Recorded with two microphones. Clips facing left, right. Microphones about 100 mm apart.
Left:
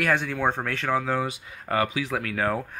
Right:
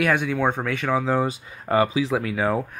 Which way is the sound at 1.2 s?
35° right (ahead or behind).